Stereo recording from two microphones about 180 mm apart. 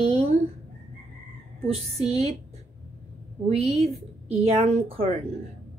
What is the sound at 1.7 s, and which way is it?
Speech, 35° right (ahead or behind).